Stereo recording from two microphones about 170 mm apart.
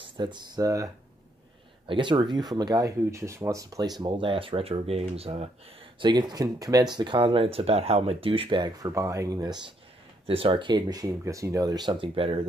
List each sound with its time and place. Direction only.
0.0 s speech: 25° right (ahead or behind)
5.9 s speech: 25° right (ahead or behind)